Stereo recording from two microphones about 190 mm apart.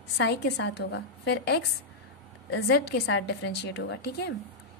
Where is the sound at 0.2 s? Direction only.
65° left (ahead or behind).